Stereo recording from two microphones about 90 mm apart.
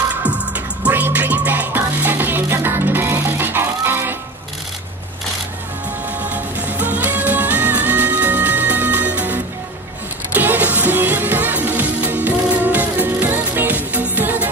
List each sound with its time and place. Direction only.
0.2 s music: 15° right (ahead or behind)
6.3 s music: 20° right (ahead or behind)